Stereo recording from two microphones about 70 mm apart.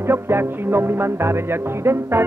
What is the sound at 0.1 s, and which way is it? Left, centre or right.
Music, right.